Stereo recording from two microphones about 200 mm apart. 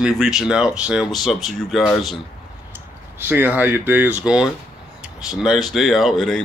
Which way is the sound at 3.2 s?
10° right (ahead or behind).